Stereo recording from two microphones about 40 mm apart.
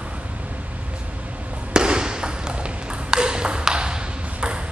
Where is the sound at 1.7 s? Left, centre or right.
Right.